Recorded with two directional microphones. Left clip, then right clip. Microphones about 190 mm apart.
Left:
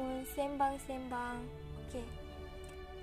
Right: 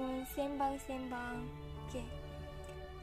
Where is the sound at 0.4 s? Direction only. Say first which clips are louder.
Left 3 dB; 15° left (ahead or behind).